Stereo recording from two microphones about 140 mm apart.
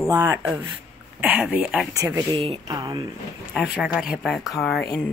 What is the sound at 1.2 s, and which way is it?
Speech, 10° right (ahead or behind).